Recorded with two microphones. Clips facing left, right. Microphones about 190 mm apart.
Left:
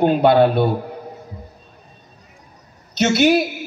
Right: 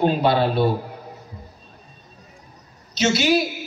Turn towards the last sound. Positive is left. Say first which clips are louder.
# left 4 dB
turn(degrees=55)  # may be behind; listen again after turning